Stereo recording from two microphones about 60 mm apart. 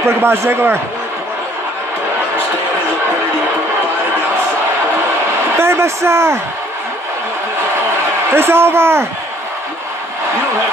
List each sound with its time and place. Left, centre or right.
0.0 s a man's voice: right
5.6 s speech: right
8.4 s a man's voice: right